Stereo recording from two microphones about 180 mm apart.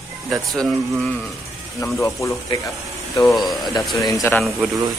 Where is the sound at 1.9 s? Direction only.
15° left (ahead or behind).